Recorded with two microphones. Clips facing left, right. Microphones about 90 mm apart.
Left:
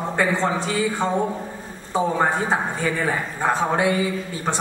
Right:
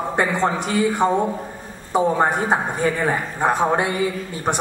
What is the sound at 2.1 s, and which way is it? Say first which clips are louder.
A man's voice: right 2 dB; 15° right (ahead or behind).